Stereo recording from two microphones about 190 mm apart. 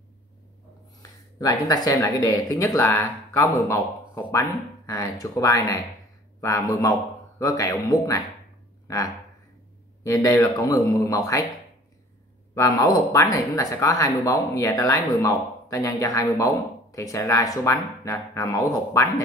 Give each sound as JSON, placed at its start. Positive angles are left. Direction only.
{"t": 1.4, "sound": "speech", "side_deg": 20}
{"t": 12.5, "sound": "speech", "side_deg": 20}